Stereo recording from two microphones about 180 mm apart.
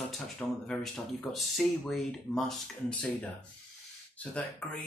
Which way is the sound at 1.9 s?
Centre (ahead or behind).